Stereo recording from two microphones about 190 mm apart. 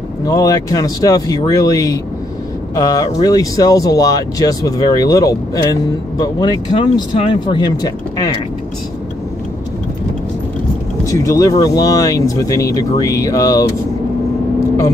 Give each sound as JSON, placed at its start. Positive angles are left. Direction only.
{"t": 0.2, "sound": "speech", "side_deg": 20}
{"t": 11.1, "sound": "speech", "side_deg": 15}